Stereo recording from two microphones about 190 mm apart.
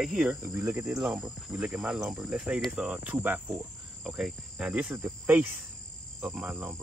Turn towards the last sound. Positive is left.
turn(degrees=-10)  # may be behind; listen again after turning